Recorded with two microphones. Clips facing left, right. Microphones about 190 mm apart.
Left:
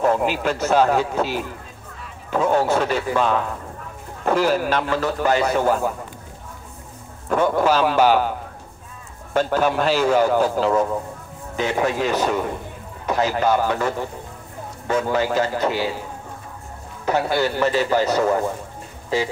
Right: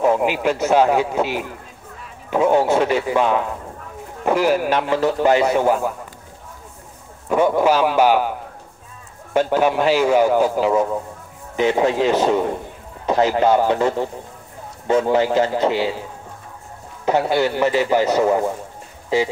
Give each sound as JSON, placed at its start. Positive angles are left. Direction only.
{"t": 0.0, "sound": "a man's voice", "side_deg": -15}
{"t": 7.2, "sound": "a man's voice", "side_deg": -15}
{"t": 11.5, "sound": "a man's voice", "side_deg": -20}
{"t": 17.0, "sound": "a man's voice", "side_deg": -20}